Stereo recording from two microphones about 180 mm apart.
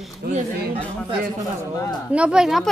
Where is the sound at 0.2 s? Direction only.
60° right (ahead or behind).